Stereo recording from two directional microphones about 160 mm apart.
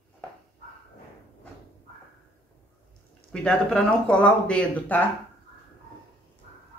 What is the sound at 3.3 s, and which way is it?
Speech, 5° left (ahead or behind).